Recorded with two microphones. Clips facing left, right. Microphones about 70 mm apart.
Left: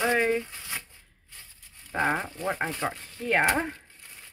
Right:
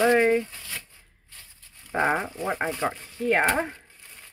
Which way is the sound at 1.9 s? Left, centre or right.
Centre.